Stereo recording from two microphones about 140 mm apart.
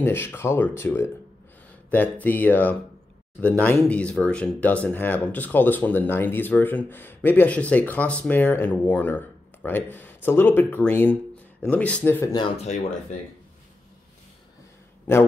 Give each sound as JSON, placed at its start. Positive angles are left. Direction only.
{"t": 0.0, "sound": "speech", "side_deg": 15}